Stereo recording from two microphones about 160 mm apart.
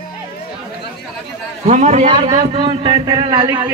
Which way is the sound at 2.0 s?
35° right (ahead or behind).